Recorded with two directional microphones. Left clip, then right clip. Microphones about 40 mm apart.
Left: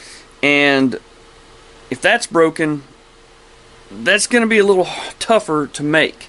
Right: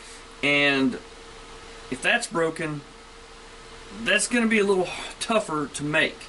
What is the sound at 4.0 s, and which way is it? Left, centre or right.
Speech, left.